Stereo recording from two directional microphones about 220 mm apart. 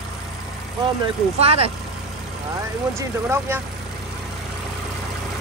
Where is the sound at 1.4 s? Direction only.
25° right (ahead or behind).